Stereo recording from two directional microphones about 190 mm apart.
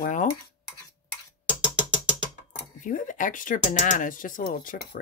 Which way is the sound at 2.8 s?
45° left (ahead or behind).